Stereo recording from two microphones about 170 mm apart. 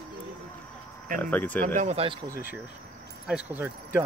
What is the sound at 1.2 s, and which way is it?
Speech, 10° left (ahead or behind).